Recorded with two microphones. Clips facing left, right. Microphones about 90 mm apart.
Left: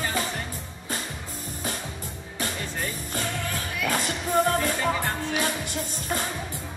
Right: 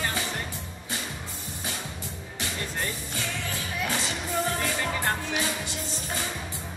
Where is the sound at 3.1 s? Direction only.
45° left (ahead or behind).